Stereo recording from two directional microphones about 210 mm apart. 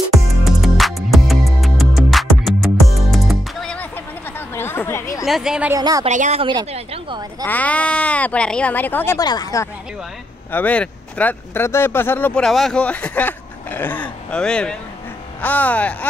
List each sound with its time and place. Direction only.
0.4 s music: centre (ahead or behind)
4.6 s chatter: 10° left (ahead or behind)
5.2 s a woman's voice: centre (ahead or behind)
5.8 s speech: 20° right (ahead or behind)
6.0 s speech: 35° right (ahead or behind)
7.4 s speech: 5° left (ahead or behind)